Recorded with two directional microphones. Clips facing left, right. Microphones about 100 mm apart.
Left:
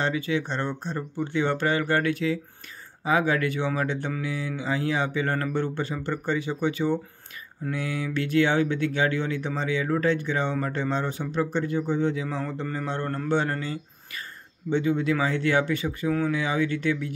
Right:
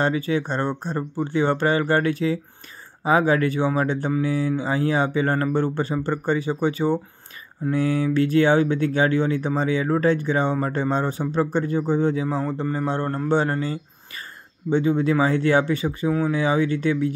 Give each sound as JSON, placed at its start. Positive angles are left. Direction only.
{"t": 0.0, "sound": "a man's voice", "side_deg": -40}